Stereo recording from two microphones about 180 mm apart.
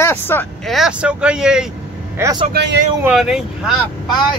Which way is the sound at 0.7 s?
5° right (ahead or behind).